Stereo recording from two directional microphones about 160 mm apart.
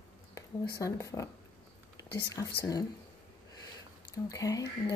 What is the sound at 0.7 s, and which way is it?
Speech, 20° left (ahead or behind).